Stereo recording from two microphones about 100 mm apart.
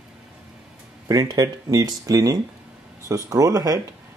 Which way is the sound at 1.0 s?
40° right (ahead or behind).